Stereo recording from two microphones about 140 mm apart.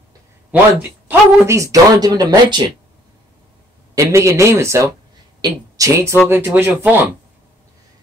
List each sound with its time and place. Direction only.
1.0 s speech: 20° right (ahead or behind)
3.9 s speech: 20° right (ahead or behind)